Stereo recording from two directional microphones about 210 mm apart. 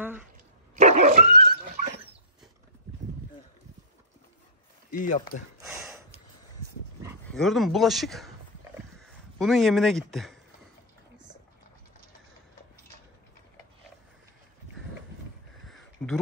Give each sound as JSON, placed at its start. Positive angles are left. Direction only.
{"t": 0.0, "sound": "dog", "side_deg": -10}
{"t": 0.7, "sound": "dog", "side_deg": -35}
{"t": 4.9, "sound": "speech", "side_deg": 40}
{"t": 5.6, "sound": "a sound", "side_deg": -5}
{"t": 7.3, "sound": "speech", "side_deg": 0}
{"t": 9.4, "sound": "speech", "side_deg": 0}
{"t": 15.6, "sound": "a sound", "side_deg": 0}